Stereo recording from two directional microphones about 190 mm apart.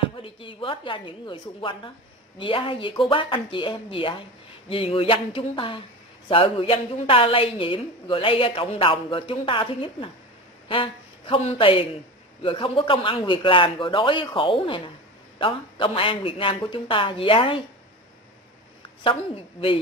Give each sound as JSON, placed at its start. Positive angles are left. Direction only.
{"t": 0.2, "sound": "a man's voice", "side_deg": 30}
{"t": 19.0, "sound": "a man's voice", "side_deg": 30}